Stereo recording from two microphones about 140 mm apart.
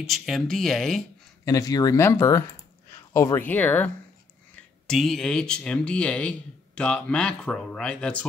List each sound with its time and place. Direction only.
0.0 s speech: centre (ahead or behind)
1.4 s speech: 25° left (ahead or behind); by 8.3 s 5° left (ahead or behind)